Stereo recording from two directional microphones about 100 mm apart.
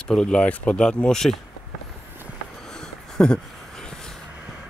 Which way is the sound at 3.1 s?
10° left (ahead or behind).